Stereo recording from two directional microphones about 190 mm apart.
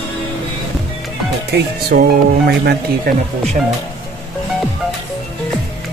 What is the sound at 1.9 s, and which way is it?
Speech, 55° right (ahead or behind).